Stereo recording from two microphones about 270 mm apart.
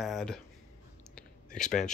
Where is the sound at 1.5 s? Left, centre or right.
Centre.